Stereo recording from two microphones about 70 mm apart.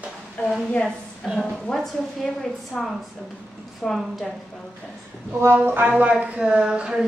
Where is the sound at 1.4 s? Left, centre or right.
Centre.